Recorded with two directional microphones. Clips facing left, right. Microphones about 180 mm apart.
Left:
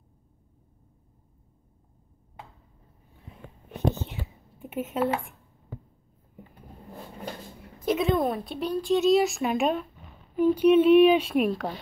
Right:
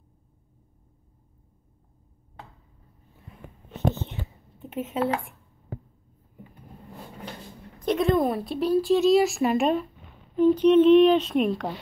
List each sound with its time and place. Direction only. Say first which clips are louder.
4.6 s speech: even; 5° left (ahead or behind)
7.8 s speech: right 2 dB; centre (ahead or behind)